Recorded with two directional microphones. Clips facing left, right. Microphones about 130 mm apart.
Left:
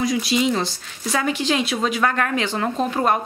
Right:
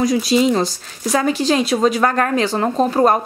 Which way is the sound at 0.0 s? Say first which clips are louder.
Right 5 dB; 40° right (ahead or behind).